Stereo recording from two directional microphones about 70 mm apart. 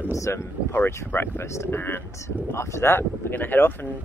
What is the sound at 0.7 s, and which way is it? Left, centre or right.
Speech, left.